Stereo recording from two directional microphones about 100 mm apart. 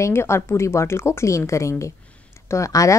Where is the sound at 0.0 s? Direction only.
25° left (ahead or behind).